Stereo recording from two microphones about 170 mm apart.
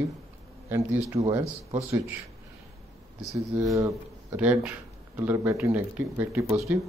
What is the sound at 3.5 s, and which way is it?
Speech, 10° right (ahead or behind).